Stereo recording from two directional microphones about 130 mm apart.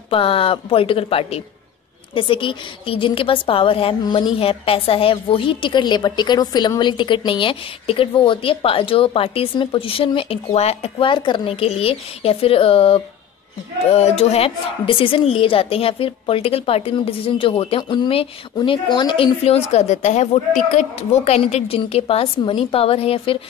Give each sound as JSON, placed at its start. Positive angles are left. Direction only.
{"t": 0.1, "sound": "a woman's voice", "side_deg": 45}
{"t": 4.0, "sound": "a woman's voice", "side_deg": 35}
{"t": 4.4, "sound": "a woman's voice", "side_deg": 45}